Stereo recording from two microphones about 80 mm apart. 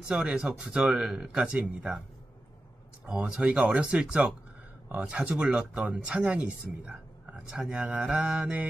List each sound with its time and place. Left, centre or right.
0.1 s speech: centre
3.1 s speech: centre